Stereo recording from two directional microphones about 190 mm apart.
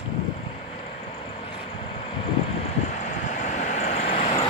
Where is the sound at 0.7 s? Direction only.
30° left (ahead or behind).